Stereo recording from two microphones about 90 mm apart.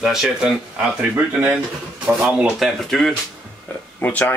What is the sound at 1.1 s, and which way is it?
Speech, 20° right (ahead or behind).